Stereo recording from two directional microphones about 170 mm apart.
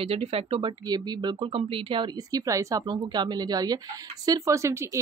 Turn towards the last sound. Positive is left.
turn(degrees=-15)  # may be behind; listen again after turning